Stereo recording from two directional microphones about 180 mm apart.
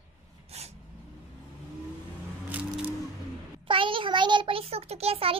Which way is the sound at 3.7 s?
30° right (ahead or behind).